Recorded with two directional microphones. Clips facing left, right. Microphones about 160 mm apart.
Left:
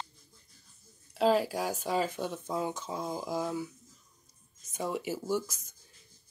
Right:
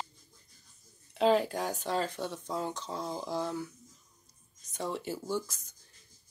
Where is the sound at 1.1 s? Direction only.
5° left (ahead or behind).